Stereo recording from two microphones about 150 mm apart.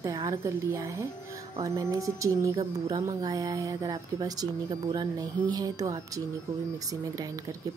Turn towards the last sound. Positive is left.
turn(degrees=-25)  # may be behind; listen again after turning